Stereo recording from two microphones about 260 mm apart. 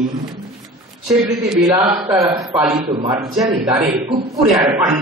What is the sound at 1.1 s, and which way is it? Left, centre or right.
A man's voice, centre.